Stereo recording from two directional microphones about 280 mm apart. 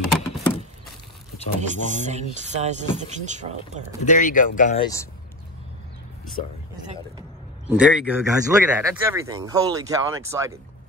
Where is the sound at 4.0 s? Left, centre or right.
Left.